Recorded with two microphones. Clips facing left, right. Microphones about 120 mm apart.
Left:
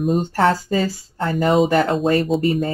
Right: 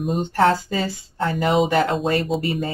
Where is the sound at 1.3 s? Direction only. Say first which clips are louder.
Left 3 dB; 45° left (ahead or behind).